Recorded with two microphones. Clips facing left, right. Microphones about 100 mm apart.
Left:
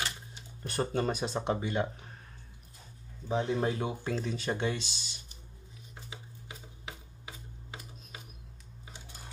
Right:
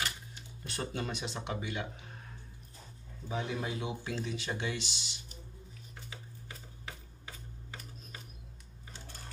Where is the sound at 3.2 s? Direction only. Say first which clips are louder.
Left 6 dB; 30° left (ahead or behind).